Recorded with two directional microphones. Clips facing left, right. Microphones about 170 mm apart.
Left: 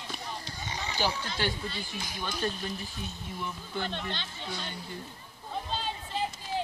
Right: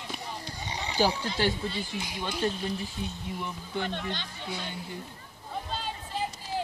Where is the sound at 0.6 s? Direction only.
20° right (ahead or behind).